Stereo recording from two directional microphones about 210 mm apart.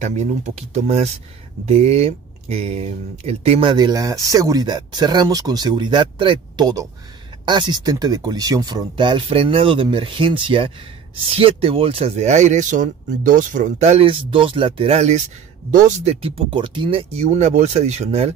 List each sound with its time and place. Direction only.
0.0 s speech: 35° right (ahead or behind)